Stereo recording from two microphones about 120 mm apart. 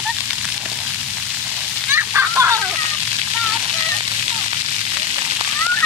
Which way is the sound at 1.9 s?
20° right (ahead or behind).